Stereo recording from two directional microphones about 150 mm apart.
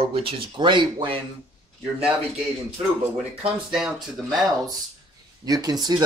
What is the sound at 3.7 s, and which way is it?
Speech, centre (ahead or behind).